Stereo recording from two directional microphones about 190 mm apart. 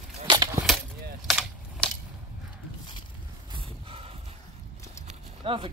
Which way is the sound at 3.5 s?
30° right (ahead or behind).